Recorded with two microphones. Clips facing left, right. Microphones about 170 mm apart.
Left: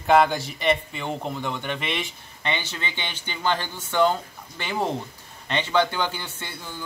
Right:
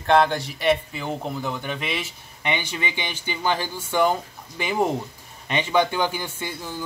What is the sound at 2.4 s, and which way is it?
Speech, 15° right (ahead or behind).